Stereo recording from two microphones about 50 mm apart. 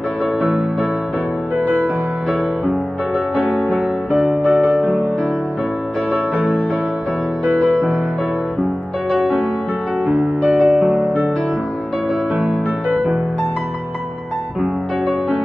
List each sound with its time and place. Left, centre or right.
4.1 s music: right
6.1 s music: centre
7.5 s music: centre
10.0 s music: right
10.4 s music: centre